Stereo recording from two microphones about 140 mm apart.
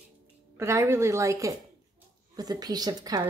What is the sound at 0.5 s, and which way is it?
A woman's voice, 20° right (ahead or behind).